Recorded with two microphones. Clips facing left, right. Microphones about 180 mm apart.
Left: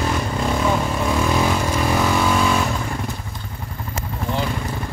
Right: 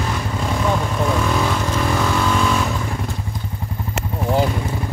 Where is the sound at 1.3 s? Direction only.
10° left (ahead or behind).